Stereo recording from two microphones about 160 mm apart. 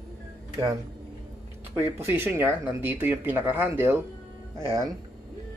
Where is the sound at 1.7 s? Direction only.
15° right (ahead or behind).